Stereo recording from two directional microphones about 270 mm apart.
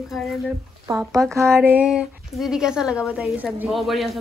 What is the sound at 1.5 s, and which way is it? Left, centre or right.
Speech, centre.